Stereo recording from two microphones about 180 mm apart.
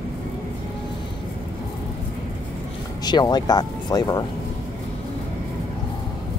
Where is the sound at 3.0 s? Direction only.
25° left (ahead or behind).